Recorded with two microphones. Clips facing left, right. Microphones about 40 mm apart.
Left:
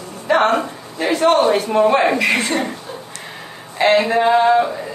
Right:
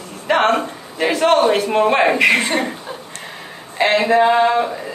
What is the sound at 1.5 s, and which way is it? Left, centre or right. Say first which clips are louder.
A woman's voice: left 1 dB; right.